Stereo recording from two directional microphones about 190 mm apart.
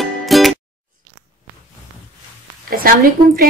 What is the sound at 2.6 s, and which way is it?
Speech, 50° right (ahead or behind).